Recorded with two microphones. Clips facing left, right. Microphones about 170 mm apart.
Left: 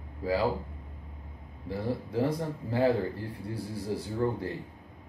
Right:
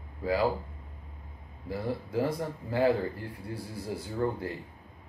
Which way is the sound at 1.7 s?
30° left (ahead or behind).